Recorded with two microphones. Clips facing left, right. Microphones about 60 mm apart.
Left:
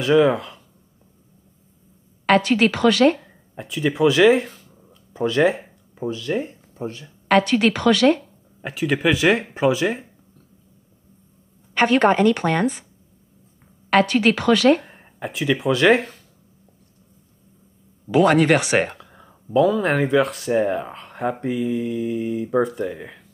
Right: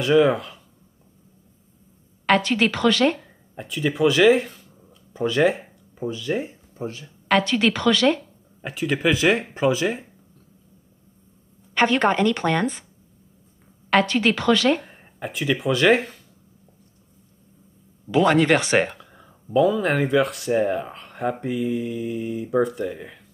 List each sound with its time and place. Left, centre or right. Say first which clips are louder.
0.0 s speech: left 1 dB; centre
2.4 s speech: left 3 dB; centre
7.3 s speech: left 3 dB; centre
11.7 s a woman's voice: left 3 dB; centre
13.8 s speech: left 2 dB; centre
18.0 s a woman's voice: left 2 dB; centre
18.8 s speech: even; centre